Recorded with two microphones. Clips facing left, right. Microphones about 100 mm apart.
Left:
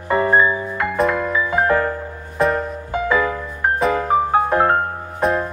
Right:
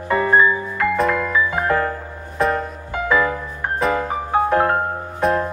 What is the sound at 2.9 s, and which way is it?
Music, 20° left (ahead or behind).